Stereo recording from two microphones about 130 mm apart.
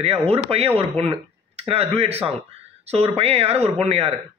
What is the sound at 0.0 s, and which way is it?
Speech, 50° right (ahead or behind).